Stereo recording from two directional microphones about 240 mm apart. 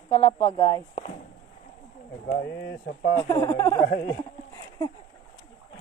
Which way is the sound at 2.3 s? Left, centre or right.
Left.